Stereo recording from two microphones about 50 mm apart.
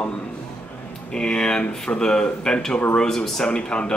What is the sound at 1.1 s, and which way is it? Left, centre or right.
Speech, centre.